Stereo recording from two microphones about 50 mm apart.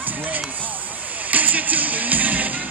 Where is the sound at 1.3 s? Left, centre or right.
Right.